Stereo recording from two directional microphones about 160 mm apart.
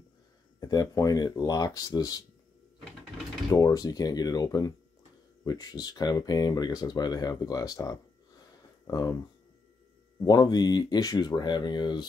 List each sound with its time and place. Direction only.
0.6 s speech: 20° left (ahead or behind)
3.5 s speech: 20° left (ahead or behind)
10.2 s speech: 25° left (ahead or behind)